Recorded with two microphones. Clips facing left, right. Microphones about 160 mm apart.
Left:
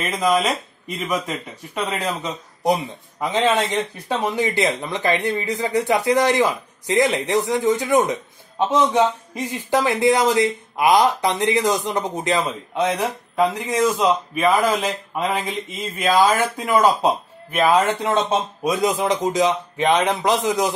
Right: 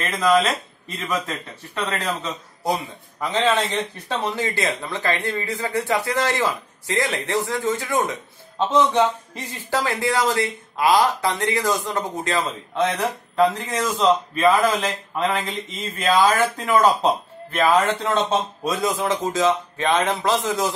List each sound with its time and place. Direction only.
0.0 s speech: 15° left (ahead or behind)
16.3 s speech: 5° left (ahead or behind)